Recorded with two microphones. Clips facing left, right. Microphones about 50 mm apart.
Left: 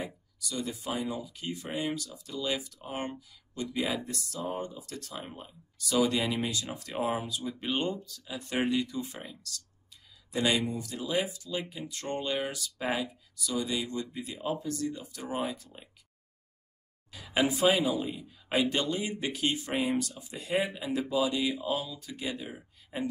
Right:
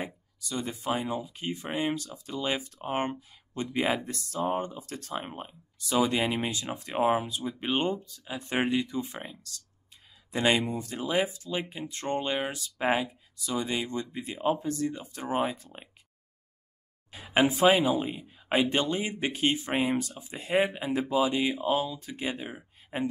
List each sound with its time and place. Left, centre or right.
0.0 s speech: right
17.1 s a woman's voice: right